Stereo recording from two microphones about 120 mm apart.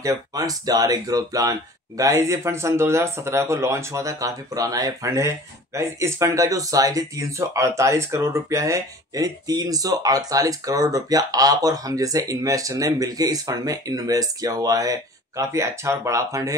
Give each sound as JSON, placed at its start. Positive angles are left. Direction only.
{"t": 0.0, "sound": "speech", "side_deg": -30}